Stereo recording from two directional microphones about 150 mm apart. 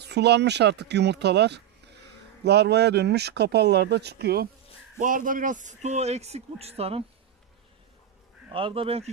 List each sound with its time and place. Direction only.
0.0 s speech: 90° right
4.9 s speech: 65° right (ahead or behind); by 7.1 s 40° right (ahead or behind)
8.5 s speech: 35° right (ahead or behind)